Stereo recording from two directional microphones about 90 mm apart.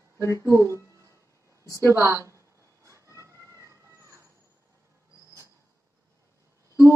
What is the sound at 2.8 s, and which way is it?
Cat, 35° right (ahead or behind).